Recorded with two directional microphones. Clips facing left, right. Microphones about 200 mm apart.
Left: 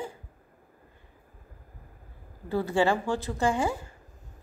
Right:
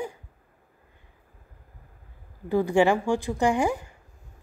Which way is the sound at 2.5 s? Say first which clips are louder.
Right 4 dB; 15° right (ahead or behind).